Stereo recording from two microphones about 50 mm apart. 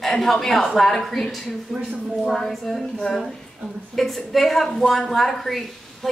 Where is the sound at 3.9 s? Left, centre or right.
Centre.